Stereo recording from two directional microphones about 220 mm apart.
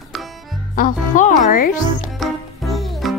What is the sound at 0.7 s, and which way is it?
Music, 35° left (ahead or behind).